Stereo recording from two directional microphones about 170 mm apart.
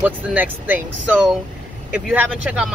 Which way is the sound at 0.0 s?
10° right (ahead or behind).